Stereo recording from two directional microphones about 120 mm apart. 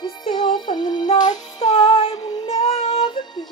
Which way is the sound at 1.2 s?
80° left.